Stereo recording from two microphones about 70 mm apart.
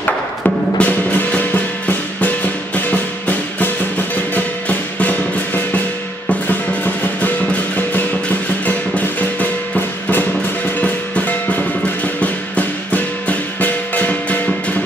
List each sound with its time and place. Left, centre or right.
0.7 s music: left